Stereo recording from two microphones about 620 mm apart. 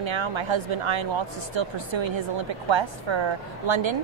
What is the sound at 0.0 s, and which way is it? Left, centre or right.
A woman's voice, right.